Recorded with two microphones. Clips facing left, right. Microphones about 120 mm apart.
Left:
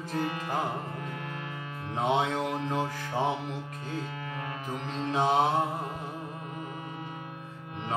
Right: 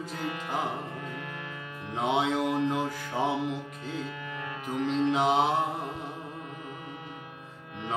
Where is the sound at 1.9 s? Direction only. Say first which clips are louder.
Even; 15° right (ahead or behind).